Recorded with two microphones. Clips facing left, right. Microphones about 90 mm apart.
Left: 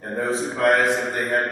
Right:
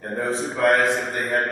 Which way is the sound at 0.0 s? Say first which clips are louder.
Left 1 dB; centre (ahead or behind).